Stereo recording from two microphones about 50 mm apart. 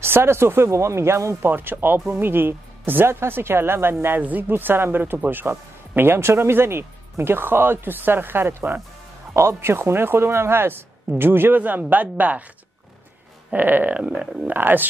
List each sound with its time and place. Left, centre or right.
0.0 s speech: right
1.5 s speech: right
4.2 s speech: right
13.5 s a sound: right
14.5 s speech: right